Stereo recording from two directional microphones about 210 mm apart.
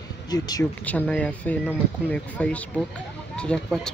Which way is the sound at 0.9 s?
5° left (ahead or behind).